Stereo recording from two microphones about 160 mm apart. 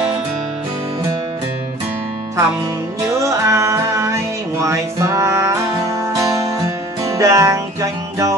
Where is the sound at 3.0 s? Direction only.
20° right (ahead or behind).